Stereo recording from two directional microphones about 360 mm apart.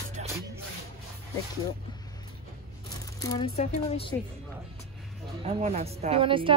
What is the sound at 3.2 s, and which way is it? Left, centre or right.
Speech, centre.